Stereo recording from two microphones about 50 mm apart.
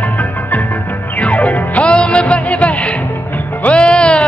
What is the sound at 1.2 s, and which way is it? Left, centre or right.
Music, left.